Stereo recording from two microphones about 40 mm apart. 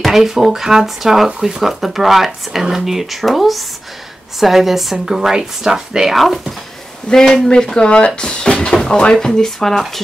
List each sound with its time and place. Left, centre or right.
0.0 s speech: centre
6.1 s speech: centre
7.1 s speech: centre
7.8 s speech: left; by 9.8 s centre